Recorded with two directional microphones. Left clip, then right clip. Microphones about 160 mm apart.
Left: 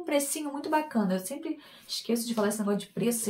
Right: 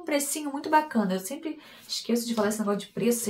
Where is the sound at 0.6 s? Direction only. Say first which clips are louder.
Right 5 dB; 10° right (ahead or behind).